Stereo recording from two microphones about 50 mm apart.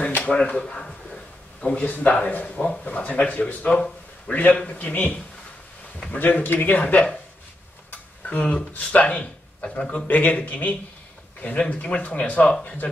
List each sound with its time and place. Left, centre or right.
0.0 s a sound: left
0.3 s a man's voice: centre; by 6.8 s left
6.8 s speech: left
8.3 s a man's voice: left